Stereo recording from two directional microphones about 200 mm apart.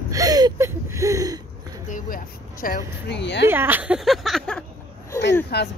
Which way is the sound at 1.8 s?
45° left (ahead or behind).